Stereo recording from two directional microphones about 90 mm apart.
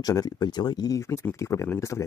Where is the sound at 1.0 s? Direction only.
30° left (ahead or behind).